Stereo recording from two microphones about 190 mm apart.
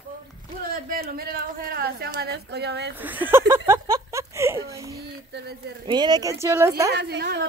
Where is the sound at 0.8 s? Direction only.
55° right (ahead or behind).